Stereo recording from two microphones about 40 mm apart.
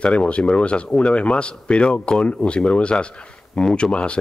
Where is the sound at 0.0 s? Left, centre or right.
Left.